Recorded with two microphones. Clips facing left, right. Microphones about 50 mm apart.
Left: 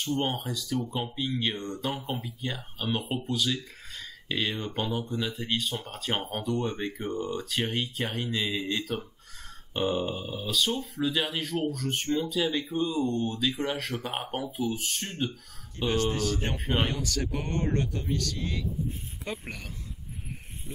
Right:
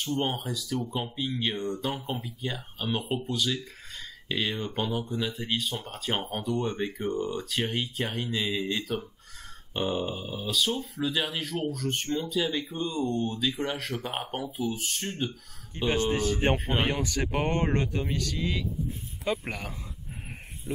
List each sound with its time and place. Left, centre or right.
0.0 s speech: centre
15.9 s speech: right
16.7 s speech: centre
17.3 s speech: right
19.4 s speech: right